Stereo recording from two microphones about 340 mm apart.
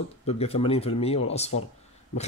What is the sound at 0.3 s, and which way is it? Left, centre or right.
A man's voice, centre.